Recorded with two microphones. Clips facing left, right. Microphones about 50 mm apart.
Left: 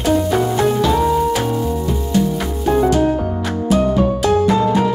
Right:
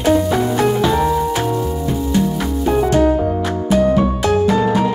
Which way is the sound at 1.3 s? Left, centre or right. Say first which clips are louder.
Even; centre.